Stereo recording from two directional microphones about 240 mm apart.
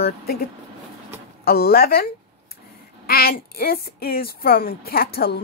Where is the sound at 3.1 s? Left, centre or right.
Left.